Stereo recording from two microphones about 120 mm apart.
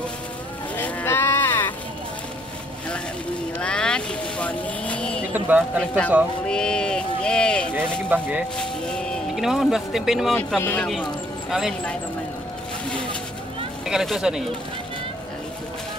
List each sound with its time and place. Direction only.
0.7 s livestock: 15° left (ahead or behind)
3.5 s vehicle: 10° left (ahead or behind)
5.3 s a man's voice: 15° right (ahead or behind)
5.8 s speech: 10° left (ahead or behind)
6.4 s a sound: 5° left (ahead or behind)
8.1 s speech: 10° right (ahead or behind)
8.5 s speech: 5° left (ahead or behind)
13.8 s speech: 5° right (ahead or behind)